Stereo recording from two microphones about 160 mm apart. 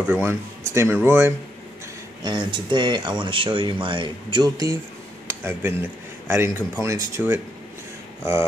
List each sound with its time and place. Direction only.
0.0 s speech: 15° right (ahead or behind)
2.2 s speech: 30° right (ahead or behind)
5.4 s speech: 15° right (ahead or behind)